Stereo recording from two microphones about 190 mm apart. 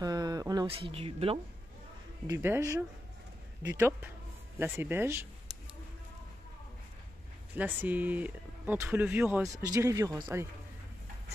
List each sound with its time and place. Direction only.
0.0 s a sound: 20° right (ahead or behind)
0.7 s speech: 30° right (ahead or behind)
2.2 s speech: 15° right (ahead or behind)
7.5 s speech: 10° right (ahead or behind)